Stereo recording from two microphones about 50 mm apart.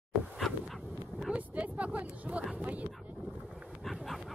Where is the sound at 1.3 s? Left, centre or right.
Right.